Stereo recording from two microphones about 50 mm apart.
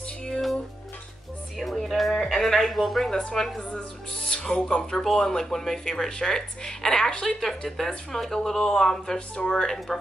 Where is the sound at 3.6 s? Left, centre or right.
Centre.